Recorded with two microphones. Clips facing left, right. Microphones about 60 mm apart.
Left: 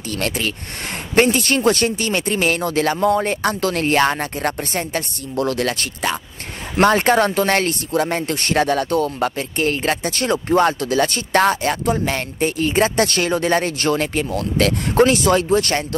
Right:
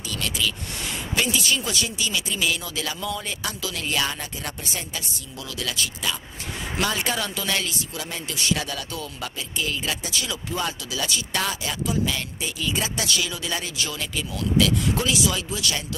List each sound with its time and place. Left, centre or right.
0.1 s speech: left